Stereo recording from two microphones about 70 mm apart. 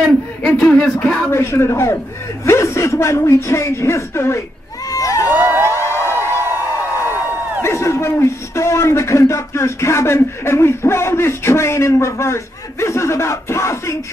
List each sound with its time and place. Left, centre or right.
0.0 s speech: centre
1.3 s a man's voice: left
4.9 s crowd: left
5.4 s a sound: right
5.7 s a sound: left
7.6 s a man's voice: left